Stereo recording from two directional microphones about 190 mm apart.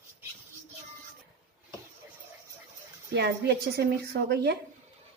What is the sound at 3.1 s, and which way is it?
A woman's voice, 60° right (ahead or behind).